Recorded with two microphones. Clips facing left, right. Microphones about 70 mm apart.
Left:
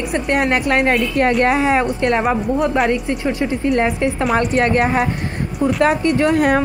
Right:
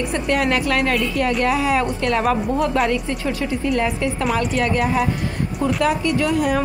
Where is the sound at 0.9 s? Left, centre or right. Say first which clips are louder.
Left 4 dB; left.